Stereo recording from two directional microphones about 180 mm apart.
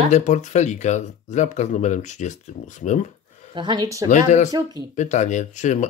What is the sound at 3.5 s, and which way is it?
Speech, 25° right (ahead or behind).